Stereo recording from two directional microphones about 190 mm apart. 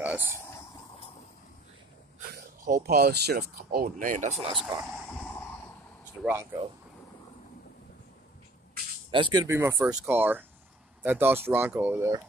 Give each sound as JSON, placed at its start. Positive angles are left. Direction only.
{"t": 0.0, "sound": "a sound", "side_deg": -10}
{"t": 2.1, "sound": "speech", "side_deg": -50}
{"t": 6.2, "sound": "speech", "side_deg": 5}
{"t": 9.1, "sound": "speech", "side_deg": -25}